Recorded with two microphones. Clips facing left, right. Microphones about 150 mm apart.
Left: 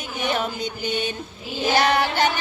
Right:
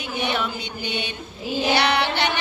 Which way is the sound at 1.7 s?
45° left (ahead or behind).